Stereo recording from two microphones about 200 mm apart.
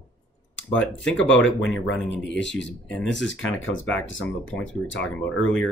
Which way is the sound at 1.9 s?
65° left (ahead or behind).